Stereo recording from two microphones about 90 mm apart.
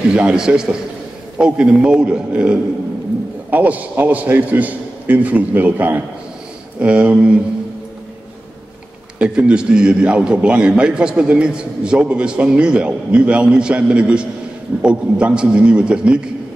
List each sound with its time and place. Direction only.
0.1 s a man's voice: 10° right (ahead or behind)
9.2 s a man's voice: 10° right (ahead or behind)